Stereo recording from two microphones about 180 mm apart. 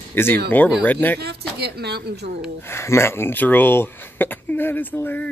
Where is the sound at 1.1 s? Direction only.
65° right (ahead or behind).